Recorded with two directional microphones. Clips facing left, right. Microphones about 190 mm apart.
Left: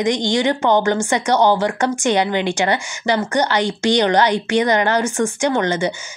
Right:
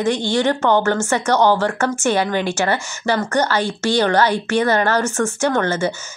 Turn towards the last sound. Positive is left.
turn(degrees=15)  # may be behind; listen again after turning